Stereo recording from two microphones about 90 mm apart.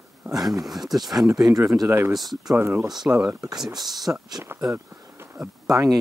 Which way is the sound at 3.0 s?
15° right (ahead or behind).